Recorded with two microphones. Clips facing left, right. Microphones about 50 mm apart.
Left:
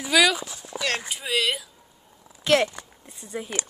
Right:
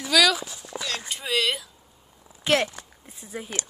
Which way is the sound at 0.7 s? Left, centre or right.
Centre.